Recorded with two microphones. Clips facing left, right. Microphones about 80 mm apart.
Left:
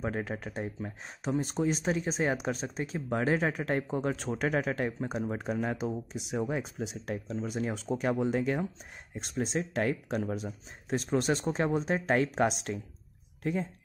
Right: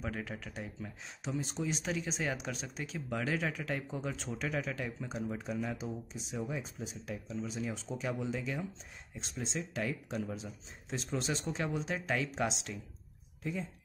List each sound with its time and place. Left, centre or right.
0.0 s speech: left
7.3 s speech: left